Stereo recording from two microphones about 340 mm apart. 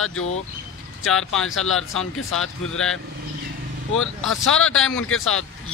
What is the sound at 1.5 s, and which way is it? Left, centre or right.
Speech, left.